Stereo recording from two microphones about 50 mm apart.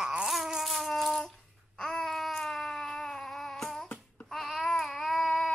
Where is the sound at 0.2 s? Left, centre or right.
Centre.